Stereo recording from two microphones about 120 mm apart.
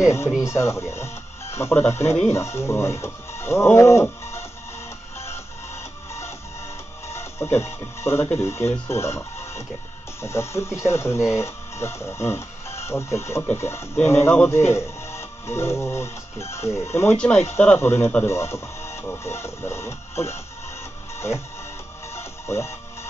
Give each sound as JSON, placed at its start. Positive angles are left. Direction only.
{"t": 0.0, "sound": "speech", "side_deg": 25}
{"t": 5.1, "sound": "music", "side_deg": 20}
{"t": 7.1, "sound": "speech", "side_deg": 20}
{"t": 22.1, "sound": "music", "side_deg": 20}